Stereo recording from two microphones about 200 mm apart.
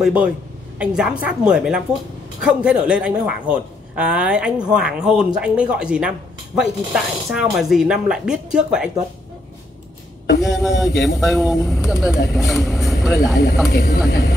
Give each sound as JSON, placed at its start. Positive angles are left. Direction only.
{"t": 0.0, "sound": "a man's voice", "side_deg": -5}
{"t": 10.4, "sound": "a man's voice", "side_deg": 0}
{"t": 13.7, "sound": "speech", "side_deg": 50}